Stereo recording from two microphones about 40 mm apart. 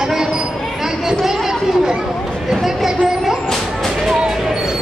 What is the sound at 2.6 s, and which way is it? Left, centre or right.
Vehicle, centre.